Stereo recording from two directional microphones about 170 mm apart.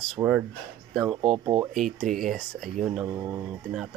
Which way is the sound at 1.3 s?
25° right (ahead or behind).